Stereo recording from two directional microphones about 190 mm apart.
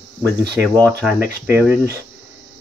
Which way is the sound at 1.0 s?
10° right (ahead or behind).